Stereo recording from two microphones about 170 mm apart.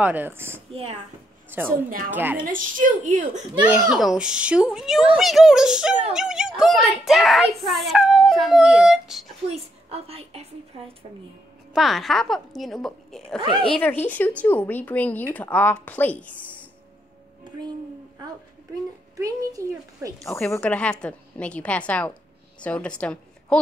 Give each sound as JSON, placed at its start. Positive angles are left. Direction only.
{"t": 0.0, "sound": "speech", "side_deg": -10}
{"t": 2.4, "sound": "a woman's voice", "side_deg": -50}
{"t": 3.9, "sound": "a child's voice", "side_deg": -5}
{"t": 9.5, "sound": "a woman's voice", "side_deg": -35}
{"t": 11.7, "sound": "a child's voice", "side_deg": 0}
{"t": 19.1, "sound": "speech", "side_deg": -20}
{"t": 20.4, "sound": "a woman's voice", "side_deg": 10}